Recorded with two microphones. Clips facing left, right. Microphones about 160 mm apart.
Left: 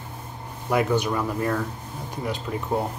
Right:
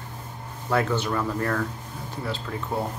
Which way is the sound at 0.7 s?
15° left (ahead or behind).